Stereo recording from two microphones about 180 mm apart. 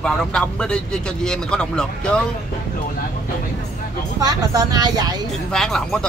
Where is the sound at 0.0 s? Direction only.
5° left (ahead or behind).